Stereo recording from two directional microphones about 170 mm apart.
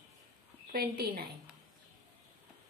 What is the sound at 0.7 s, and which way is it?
Speech, 65° right (ahead or behind).